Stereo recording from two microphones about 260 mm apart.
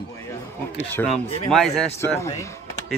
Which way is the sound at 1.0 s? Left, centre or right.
Centre.